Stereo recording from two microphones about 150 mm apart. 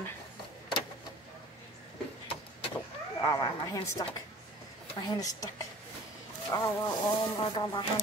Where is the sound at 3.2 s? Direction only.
20° left (ahead or behind).